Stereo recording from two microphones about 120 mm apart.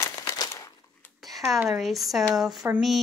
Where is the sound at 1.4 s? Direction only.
25° right (ahead or behind).